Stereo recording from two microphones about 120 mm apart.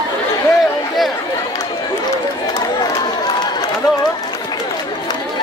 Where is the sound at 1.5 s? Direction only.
30° left (ahead or behind).